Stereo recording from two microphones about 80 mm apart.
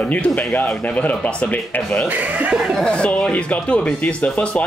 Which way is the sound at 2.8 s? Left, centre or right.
Centre.